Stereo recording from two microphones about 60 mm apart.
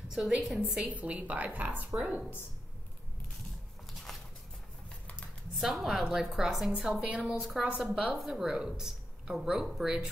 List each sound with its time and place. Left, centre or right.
0.1 s speech: centre
0.8 s a woman's voice: right
3.9 s a sound: centre
5.6 s a woman's voice: centre